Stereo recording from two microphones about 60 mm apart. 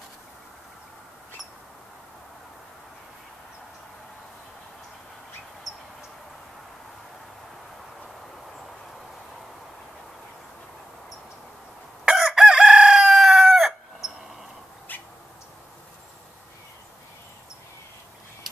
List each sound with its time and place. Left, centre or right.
5.7 s a sound: centre
12.0 s chicken: centre
14.9 s bird: left